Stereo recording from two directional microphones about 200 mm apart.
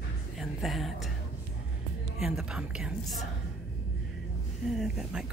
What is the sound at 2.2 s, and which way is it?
A woman's voice, centre (ahead or behind).